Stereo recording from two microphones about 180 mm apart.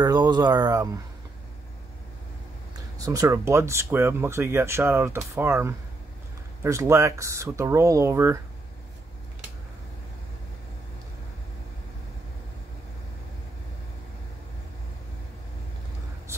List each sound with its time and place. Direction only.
0.0 s speech: 25° right (ahead or behind)
3.0 s speech: 20° right (ahead or behind)